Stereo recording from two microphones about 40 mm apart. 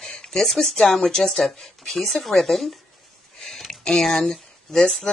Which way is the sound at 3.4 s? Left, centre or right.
Centre.